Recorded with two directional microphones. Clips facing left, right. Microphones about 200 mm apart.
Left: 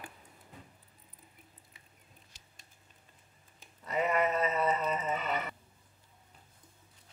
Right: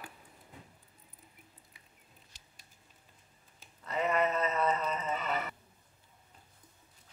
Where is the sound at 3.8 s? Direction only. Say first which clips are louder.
Left 1 dB; 10° left (ahead or behind).